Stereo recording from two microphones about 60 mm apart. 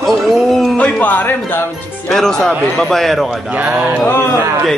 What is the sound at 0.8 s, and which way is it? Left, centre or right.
Speech, left.